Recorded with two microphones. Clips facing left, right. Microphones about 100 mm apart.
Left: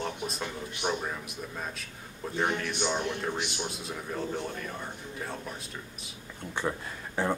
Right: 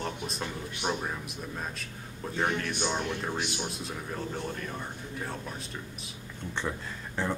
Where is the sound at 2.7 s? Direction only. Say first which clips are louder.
Left 1 dB; 15° left (ahead or behind).